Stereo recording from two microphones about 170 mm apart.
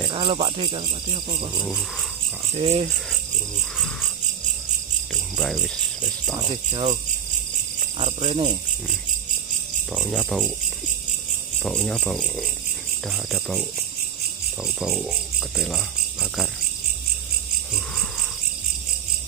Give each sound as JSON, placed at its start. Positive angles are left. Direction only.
{"t": 0.1, "sound": "insect", "side_deg": -30}
{"t": 1.6, "sound": "cricket", "side_deg": 0}
{"t": 2.5, "sound": "speech", "side_deg": -40}
{"t": 3.7, "sound": "cricket", "side_deg": 0}
{"t": 5.1, "sound": "cricket", "side_deg": 0}
{"t": 6.5, "sound": "insect", "side_deg": -30}
{"t": 8.2, "sound": "speech", "side_deg": -30}
{"t": 9.9, "sound": "speech", "side_deg": 5}
{"t": 11.6, "sound": "cricket", "side_deg": 0}